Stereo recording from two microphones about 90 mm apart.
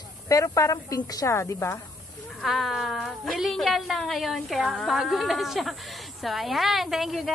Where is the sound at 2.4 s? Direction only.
Centre (ahead or behind).